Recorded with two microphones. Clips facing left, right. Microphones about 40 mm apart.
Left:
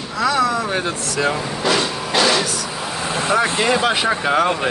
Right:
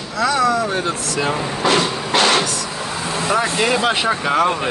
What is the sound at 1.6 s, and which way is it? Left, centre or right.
Vehicle, right.